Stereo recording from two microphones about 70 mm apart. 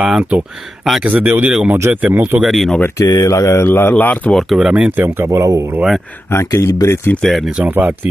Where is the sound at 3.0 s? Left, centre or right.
Left.